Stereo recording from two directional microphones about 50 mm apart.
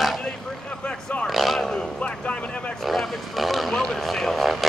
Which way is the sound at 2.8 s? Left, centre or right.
Centre.